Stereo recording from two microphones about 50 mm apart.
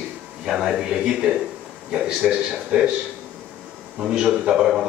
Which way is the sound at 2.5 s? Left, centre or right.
Centre.